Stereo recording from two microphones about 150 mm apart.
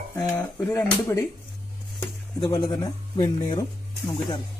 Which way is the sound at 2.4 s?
25° left (ahead or behind).